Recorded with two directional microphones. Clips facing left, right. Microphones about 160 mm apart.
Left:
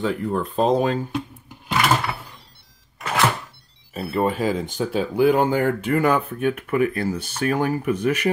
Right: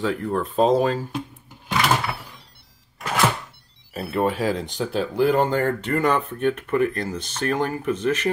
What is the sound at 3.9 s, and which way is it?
Speech, centre (ahead or behind).